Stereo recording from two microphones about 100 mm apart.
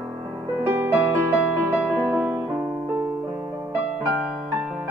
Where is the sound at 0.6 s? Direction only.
20° right (ahead or behind).